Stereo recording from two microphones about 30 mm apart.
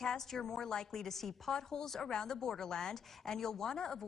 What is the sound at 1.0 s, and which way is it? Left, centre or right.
Speech, centre.